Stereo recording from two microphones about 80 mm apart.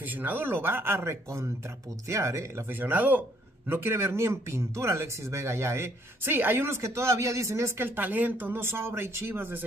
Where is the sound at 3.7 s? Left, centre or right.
Right.